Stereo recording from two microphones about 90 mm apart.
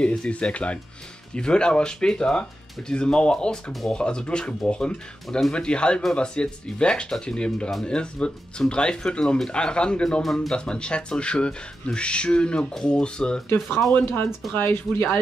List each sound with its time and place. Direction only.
0.0 s speech: 10° left (ahead or behind)
13.5 s speech: 25° left (ahead or behind)